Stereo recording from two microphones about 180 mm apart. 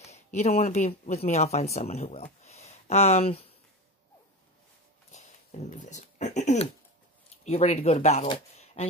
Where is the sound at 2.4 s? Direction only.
35° left (ahead or behind).